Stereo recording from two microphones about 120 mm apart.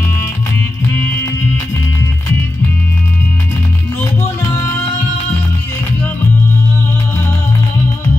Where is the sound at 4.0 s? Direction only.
20° left (ahead or behind).